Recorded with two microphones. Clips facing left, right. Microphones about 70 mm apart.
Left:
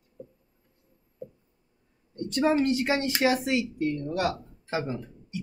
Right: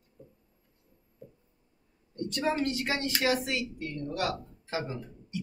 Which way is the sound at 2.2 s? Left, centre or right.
Left.